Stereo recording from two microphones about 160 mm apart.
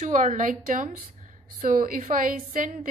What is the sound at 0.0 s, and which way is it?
A woman's voice, 55° right (ahead or behind).